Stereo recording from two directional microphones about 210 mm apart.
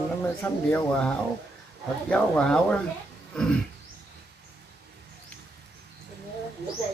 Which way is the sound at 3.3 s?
5° left (ahead or behind).